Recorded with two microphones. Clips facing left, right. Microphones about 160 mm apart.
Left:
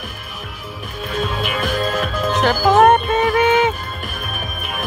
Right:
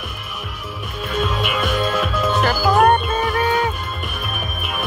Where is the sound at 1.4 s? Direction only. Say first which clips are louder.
Even; 40° left (ahead or behind).